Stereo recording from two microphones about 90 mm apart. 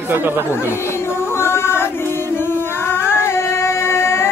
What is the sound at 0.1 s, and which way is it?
Speech, 25° right (ahead or behind).